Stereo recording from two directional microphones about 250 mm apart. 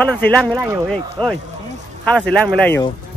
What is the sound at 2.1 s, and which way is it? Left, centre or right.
Speech, centre.